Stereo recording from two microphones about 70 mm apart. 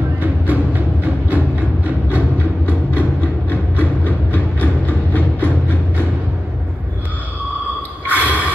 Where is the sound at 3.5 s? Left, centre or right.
Left.